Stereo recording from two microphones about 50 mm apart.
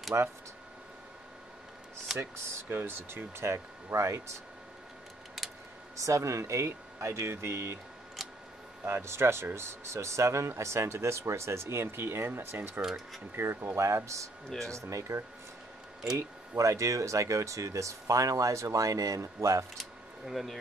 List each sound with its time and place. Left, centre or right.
0.1 s a man's voice: right
2.1 s speech: centre
2.7 s a man's voice: right
5.9 s speech: right
8.8 s a man's voice: right
12.8 s speech: centre
13.4 s speech: right
13.7 s speech: right
19.8 s a sound: centre